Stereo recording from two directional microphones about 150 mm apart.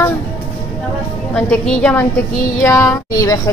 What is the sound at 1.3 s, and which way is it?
Speech, 5° left (ahead or behind).